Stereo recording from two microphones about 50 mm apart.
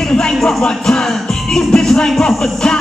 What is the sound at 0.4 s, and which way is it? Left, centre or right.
Music, centre.